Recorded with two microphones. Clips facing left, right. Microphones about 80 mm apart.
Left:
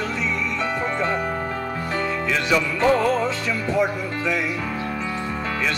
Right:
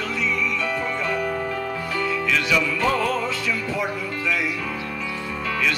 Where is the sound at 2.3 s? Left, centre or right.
Left.